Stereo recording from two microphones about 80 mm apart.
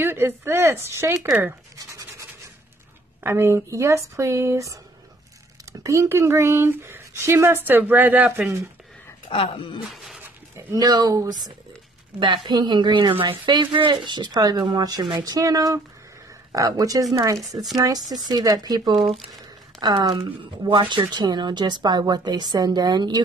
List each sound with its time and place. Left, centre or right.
0.0 s speech: right
1.8 s a sound: right
3.3 s speech: right
9.8 s a sound: centre
10.7 s speech: right
12.2 s a woman's voice: right